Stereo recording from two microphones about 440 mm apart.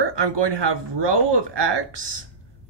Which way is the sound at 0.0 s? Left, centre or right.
Right.